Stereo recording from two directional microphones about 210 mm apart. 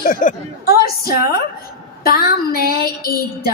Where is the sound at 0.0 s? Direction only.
40° left (ahead or behind).